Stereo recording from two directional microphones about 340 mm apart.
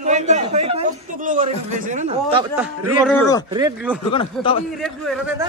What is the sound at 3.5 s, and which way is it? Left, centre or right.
Speech, centre.